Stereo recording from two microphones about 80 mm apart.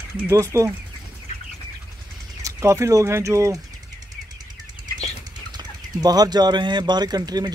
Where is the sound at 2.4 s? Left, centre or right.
Right.